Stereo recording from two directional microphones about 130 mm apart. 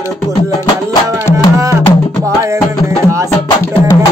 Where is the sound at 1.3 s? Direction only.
25° right (ahead or behind).